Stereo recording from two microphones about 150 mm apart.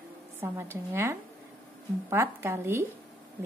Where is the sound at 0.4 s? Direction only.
15° right (ahead or behind).